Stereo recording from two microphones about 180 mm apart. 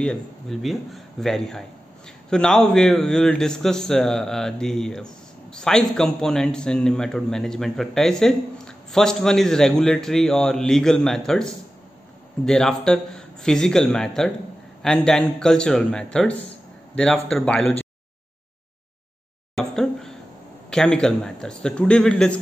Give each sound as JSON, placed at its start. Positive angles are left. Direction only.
{"t": 0.0, "sound": "a man's voice", "side_deg": 5}
{"t": 19.5, "sound": "a sound", "side_deg": 0}
{"t": 20.7, "sound": "a man's voice", "side_deg": 5}